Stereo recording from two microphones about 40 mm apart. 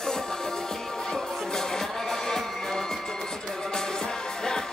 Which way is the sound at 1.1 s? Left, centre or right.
Centre.